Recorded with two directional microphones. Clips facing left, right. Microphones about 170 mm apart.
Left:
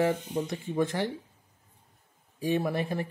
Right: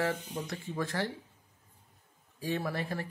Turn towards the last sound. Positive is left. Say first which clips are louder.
# left 6 dB
turn(degrees=20)  # may be behind; listen again after turning